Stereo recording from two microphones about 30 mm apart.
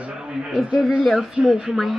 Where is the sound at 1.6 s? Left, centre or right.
Centre.